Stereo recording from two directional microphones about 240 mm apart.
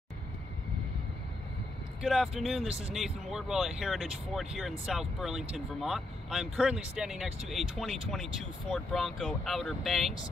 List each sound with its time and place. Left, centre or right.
2.0 s speech: centre